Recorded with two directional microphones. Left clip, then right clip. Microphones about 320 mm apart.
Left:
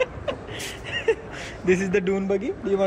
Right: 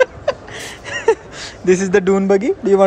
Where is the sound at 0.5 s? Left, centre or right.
Right.